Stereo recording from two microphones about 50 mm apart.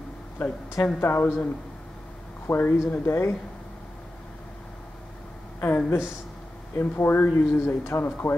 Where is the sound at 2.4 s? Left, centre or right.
Left.